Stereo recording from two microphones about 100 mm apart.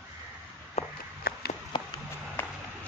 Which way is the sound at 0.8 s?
90° left.